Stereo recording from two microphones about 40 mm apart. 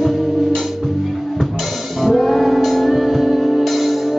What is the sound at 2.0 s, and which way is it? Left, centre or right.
Music, centre.